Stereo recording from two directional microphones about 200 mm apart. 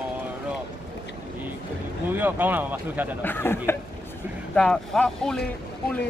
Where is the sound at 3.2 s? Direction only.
10° left (ahead or behind).